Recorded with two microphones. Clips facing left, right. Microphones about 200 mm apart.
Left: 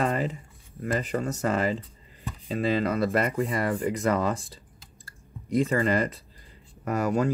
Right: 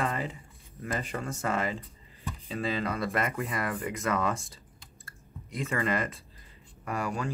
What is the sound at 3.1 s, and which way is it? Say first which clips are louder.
Speech: left 6 dB; 30° left (ahead or behind).